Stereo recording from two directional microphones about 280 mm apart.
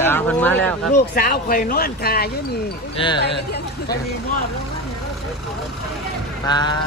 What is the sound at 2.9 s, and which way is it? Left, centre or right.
Speech, centre.